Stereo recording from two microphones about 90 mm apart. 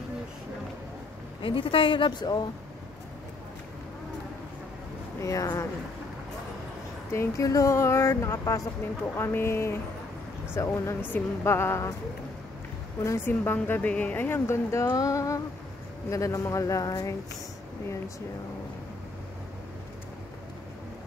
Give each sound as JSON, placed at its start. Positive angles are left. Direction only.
{"t": 1.4, "sound": "a woman's voice", "side_deg": 75}
{"t": 5.2, "sound": "speech", "side_deg": 40}
{"t": 7.1, "sound": "a woman's voice", "side_deg": 35}
{"t": 13.0, "sound": "speech", "side_deg": 35}
{"t": 13.3, "sound": "a woman's voice", "side_deg": 20}